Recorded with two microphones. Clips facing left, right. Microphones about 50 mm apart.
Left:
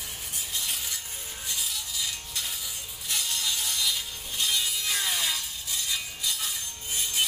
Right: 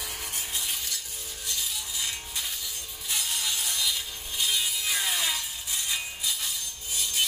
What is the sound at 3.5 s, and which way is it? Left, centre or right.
Sawing, centre.